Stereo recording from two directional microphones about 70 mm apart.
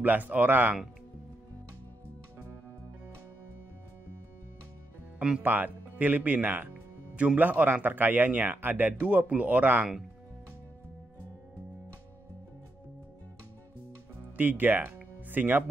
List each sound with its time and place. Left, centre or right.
0.0 s a man's voice: right
5.4 s a man's voice: right
14.3 s music: right